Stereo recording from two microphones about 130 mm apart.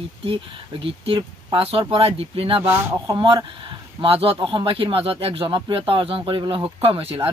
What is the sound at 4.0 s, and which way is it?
Speech, 45° right (ahead or behind).